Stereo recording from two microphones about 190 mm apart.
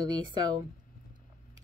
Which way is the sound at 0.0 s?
25° right (ahead or behind).